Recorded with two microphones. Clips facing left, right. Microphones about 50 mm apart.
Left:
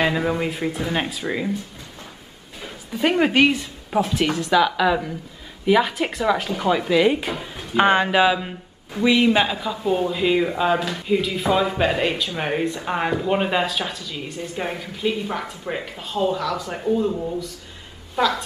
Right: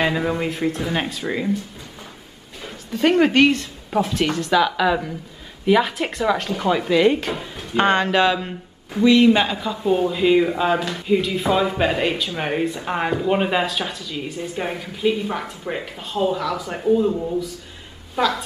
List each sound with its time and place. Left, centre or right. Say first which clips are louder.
0.0 s speech: even; centre
2.6 s a woman's voice: right 3 dB; centre